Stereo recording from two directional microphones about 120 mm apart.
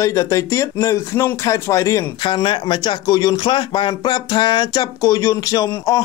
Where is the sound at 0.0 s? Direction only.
25° left (ahead or behind).